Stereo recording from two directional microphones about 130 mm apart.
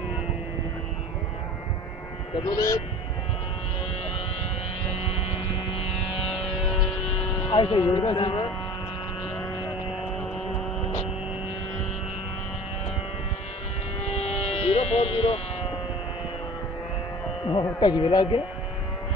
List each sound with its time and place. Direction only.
2.4 s speech: 25° left (ahead or behind)
7.4 s speech: 40° left (ahead or behind)
14.2 s music: 50° left (ahead or behind)
17.7 s speech: 35° left (ahead or behind)